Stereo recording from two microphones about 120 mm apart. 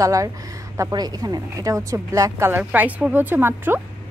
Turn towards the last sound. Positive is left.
turn(degrees=-15)  # may be behind; listen again after turning